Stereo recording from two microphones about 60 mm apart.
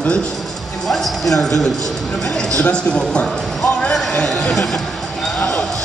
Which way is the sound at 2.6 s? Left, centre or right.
Centre.